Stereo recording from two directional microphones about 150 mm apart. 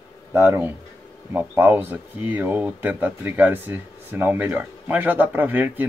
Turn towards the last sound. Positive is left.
turn(degrees=-10)  # may be behind; listen again after turning